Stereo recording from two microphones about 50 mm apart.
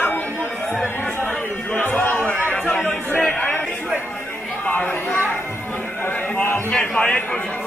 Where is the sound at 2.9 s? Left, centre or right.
Centre.